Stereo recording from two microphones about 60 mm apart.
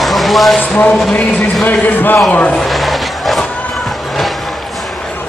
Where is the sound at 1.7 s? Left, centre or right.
Left.